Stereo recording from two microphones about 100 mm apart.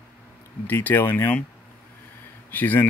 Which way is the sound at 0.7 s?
20° left (ahead or behind).